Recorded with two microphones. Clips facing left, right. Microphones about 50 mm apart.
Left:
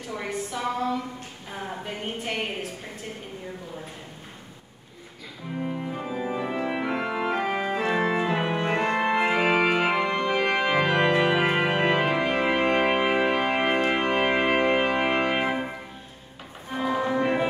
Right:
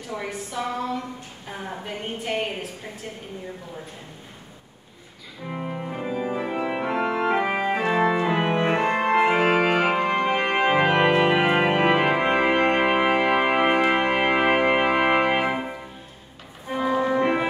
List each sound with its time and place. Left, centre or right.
0.1 s a woman's voice: centre
5.5 s organ: right
5.9 s organ: centre
7.2 s organ: right
8.1 s music: centre
8.4 s organ: right
12.7 s music: centre
16.7 s music: centre